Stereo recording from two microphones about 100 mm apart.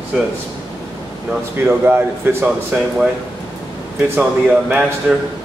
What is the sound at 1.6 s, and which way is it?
Speech, 25° right (ahead or behind).